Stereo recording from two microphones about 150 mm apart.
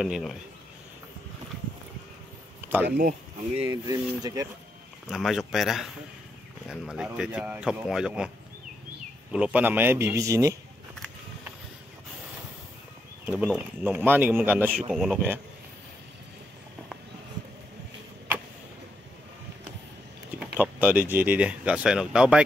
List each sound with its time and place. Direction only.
0.0 s speech: centre (ahead or behind)
2.6 s a sound: 10° right (ahead or behind)
3.6 s speech: 25° right (ahead or behind)
5.1 s speech: centre (ahead or behind)
9.3 s speech: 10° right (ahead or behind)
13.2 s speech: 10° right (ahead or behind)
20.5 s speech: 10° right (ahead or behind)